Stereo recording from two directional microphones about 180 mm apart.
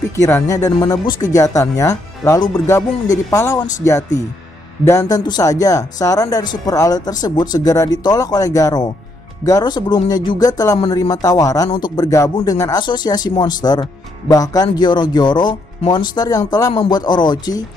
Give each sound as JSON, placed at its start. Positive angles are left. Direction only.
{"t": 0.1, "sound": "speech", "side_deg": 15}